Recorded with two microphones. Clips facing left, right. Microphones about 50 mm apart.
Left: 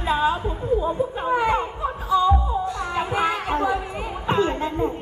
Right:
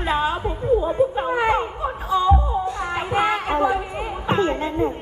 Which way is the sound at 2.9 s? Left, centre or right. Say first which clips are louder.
Right 2 dB; right.